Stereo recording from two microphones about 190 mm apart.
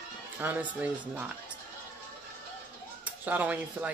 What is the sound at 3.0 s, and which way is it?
Speech, 10° right (ahead or behind).